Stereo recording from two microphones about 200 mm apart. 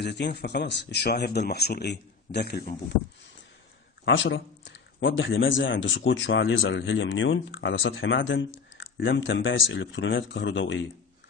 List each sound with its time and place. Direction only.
0.0 s speech: 55° left (ahead or behind)
4.0 s speech: 65° left (ahead or behind)